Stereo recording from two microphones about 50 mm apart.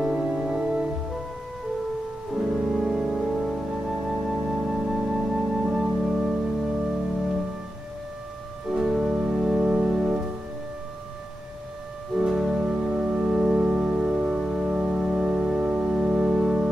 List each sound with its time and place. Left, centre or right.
0.0 s music: centre
2.3 s keyboard: centre
4.1 s music: centre
8.6 s organ: centre
12.2 s music: centre
14.1 s organ: centre